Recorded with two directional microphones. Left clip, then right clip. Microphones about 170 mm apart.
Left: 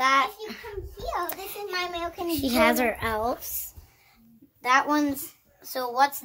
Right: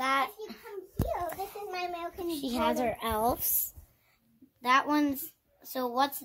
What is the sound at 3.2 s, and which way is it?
Speech, 50° right (ahead or behind).